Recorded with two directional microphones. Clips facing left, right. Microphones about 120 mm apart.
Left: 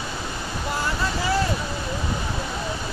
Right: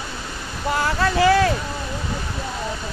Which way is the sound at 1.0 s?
90° right.